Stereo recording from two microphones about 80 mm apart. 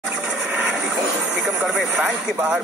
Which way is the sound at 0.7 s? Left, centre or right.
Centre.